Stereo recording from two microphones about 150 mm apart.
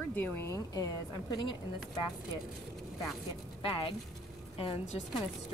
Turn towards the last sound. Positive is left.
turn(degrees=40)  # may be behind; listen again after turning